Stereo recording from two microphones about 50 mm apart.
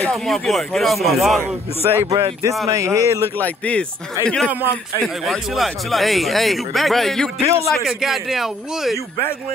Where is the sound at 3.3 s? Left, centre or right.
Left.